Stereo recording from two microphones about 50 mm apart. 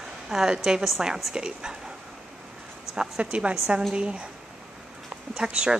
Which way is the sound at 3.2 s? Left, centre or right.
Right.